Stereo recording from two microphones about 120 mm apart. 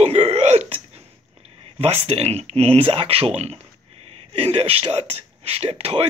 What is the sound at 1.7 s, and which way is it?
Speech, 60° right (ahead or behind).